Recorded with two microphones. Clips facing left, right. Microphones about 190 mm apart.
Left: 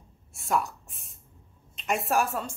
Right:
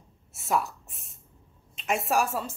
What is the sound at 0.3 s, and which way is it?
A woman's voice, centre (ahead or behind).